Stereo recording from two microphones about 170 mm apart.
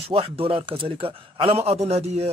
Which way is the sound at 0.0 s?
35° right (ahead or behind).